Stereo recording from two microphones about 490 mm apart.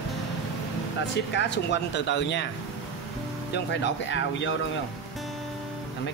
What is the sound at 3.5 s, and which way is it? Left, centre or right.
Speech, left.